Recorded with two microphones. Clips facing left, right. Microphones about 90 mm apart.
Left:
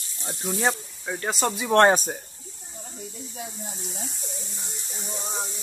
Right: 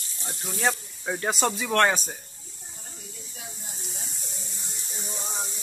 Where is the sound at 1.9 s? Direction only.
50° left (ahead or behind).